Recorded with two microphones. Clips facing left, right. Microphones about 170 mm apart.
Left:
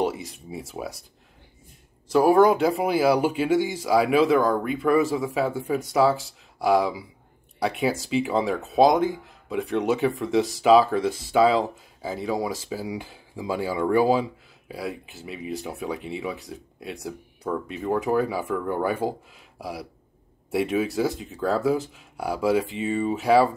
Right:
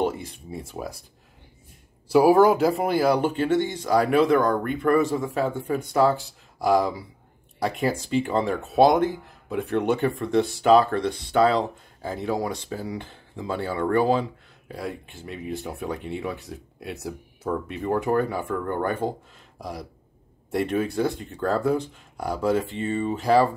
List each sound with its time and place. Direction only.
0.0 s speech: 5° left (ahead or behind)
2.0 s speech: 10° right (ahead or behind)